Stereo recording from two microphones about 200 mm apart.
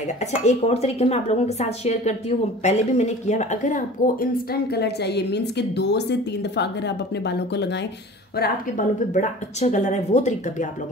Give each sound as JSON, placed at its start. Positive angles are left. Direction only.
{"t": 0.2, "sound": "speech", "side_deg": 35}
{"t": 8.4, "sound": "speech", "side_deg": 40}